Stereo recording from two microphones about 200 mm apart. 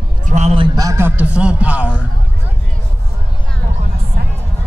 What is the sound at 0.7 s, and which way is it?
A man's voice, 15° right (ahead or behind).